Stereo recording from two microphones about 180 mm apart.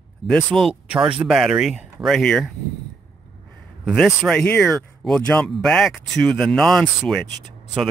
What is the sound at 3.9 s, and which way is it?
Speech, centre (ahead or behind).